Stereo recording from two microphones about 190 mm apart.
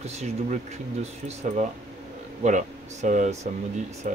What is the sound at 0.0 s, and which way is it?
Speech, 35° right (ahead or behind).